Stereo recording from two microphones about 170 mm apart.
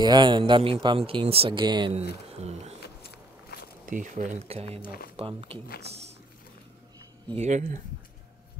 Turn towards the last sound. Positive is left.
turn(degrees=-45)  # may be behind; listen again after turning